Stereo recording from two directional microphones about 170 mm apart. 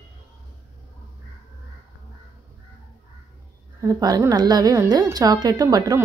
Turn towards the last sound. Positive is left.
turn(degrees=-20)  # may be behind; listen again after turning